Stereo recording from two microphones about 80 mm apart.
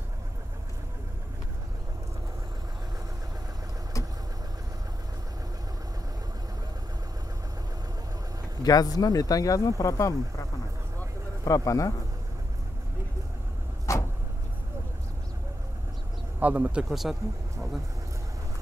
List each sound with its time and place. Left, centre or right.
8.6 s speech: left
11.4 s speech: left
13.9 s vehicle: left
16.3 s speech: centre
16.9 s speech: centre